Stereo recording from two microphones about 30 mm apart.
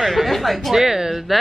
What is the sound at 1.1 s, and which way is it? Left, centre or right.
Speech, centre.